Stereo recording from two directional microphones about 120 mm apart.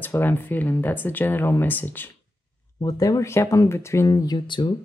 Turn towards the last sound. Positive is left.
turn(degrees=40)  # may be behind; listen again after turning